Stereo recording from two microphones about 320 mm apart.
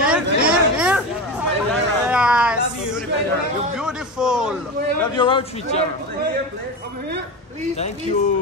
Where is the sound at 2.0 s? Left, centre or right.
Centre.